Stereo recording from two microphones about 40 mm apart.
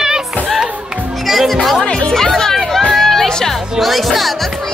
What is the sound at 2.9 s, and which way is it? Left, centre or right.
Music, centre.